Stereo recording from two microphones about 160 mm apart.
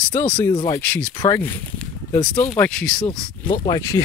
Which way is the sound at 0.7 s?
15° left (ahead or behind).